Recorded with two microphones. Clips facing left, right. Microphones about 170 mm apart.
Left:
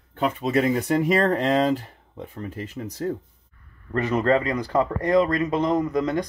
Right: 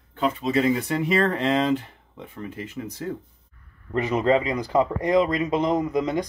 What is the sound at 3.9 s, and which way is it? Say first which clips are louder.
Speech: even; 15° right (ahead or behind).